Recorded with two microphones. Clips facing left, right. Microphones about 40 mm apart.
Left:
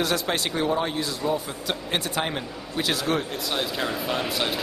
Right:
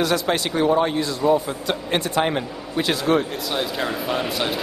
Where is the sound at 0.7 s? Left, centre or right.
Centre.